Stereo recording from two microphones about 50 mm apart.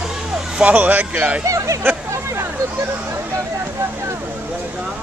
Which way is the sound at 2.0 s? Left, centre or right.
Right.